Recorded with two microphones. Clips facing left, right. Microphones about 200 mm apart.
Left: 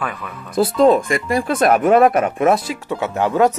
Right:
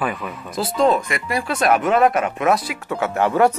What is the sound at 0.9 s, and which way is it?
Speech, 40° left (ahead or behind).